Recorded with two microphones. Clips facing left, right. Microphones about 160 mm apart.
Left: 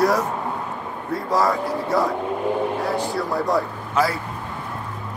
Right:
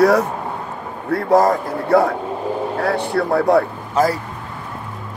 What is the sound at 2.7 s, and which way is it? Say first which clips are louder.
Speech: right 4 dB; 65° right (ahead or behind).